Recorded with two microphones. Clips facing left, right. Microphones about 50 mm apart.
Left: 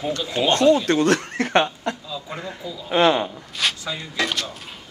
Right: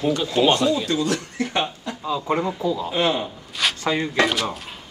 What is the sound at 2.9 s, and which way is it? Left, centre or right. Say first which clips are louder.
Speech: left 8 dB; left.